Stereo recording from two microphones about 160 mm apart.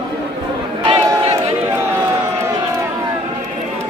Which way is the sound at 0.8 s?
40° right (ahead or behind).